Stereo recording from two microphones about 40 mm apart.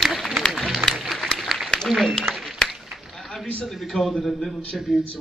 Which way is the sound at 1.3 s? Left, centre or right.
Centre.